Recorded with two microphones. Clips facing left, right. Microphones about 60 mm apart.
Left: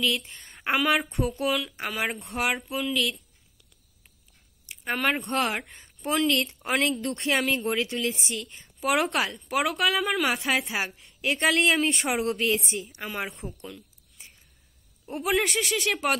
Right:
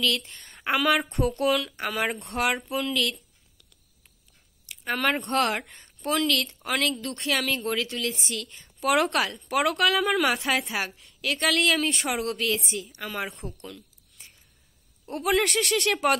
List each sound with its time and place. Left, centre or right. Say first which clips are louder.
0.2 s speech: even; centre
4.9 s speech: right 1 dB; centre
6.2 s speech: left 1 dB; left
7.4 s speech: left 1 dB; centre
11.1 s speech: left 1 dB; left
13.0 s speech: right 1 dB; centre
13.6 s a sound: even; centre
15.0 s speech: right 1 dB; centre